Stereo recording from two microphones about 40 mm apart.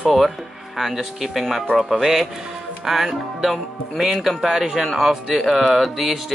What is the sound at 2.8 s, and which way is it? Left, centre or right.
Speech, centre.